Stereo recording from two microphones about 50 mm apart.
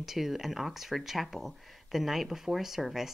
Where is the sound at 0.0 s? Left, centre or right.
Centre.